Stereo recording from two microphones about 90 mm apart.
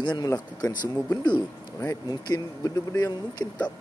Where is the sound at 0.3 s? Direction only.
35° left (ahead or behind).